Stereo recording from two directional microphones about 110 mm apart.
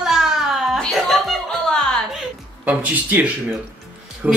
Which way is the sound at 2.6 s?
15° right (ahead or behind).